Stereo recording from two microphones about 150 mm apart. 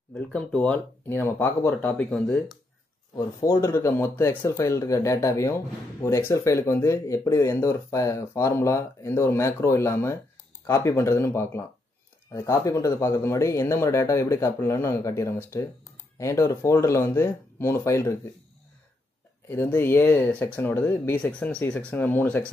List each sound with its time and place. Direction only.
0.1 s speech: 5° left (ahead or behind)
3.3 s speech: 20° left (ahead or behind)
19.5 s speech: 15° left (ahead or behind)